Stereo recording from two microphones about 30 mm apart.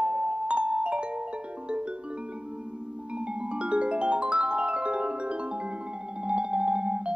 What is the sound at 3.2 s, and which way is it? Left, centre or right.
Marimba, right.